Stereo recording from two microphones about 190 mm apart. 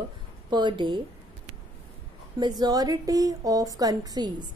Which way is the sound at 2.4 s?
20° right (ahead or behind).